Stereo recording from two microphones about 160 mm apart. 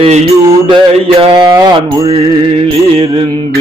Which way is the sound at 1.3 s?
30° right (ahead or behind).